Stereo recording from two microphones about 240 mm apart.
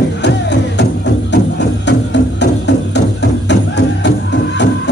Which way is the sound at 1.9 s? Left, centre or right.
Left.